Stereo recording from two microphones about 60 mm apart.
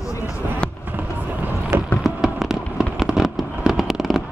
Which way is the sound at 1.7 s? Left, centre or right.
Right.